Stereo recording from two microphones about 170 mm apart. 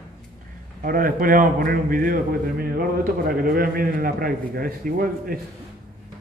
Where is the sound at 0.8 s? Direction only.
55° right (ahead or behind).